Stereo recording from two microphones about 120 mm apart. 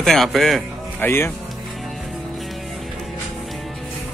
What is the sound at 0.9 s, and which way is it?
Speech, 15° left (ahead or behind).